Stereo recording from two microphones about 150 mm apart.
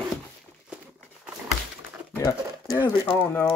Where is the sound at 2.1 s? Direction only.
20° left (ahead or behind).